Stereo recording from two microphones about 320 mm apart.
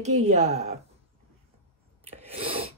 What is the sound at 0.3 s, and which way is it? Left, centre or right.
Speech, right.